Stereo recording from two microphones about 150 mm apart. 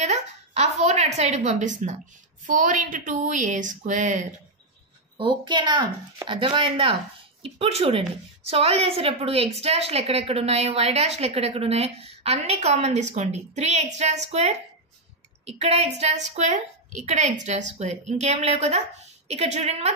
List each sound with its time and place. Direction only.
0.0 s a woman's voice: 45° right (ahead or behind)
5.1 s a woman's voice: 30° right (ahead or behind)